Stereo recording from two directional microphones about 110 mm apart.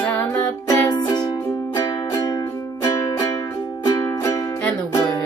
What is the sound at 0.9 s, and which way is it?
Music, 40° left (ahead or behind).